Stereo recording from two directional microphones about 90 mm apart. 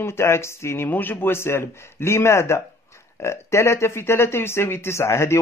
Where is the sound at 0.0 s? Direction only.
30° left (ahead or behind).